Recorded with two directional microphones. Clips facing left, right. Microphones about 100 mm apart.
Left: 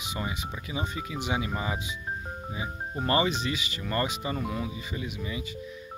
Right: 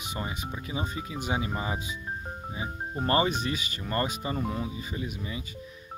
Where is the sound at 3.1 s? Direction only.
35° right (ahead or behind).